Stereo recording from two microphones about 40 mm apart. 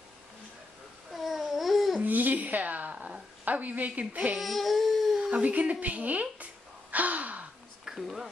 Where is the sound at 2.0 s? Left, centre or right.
Right.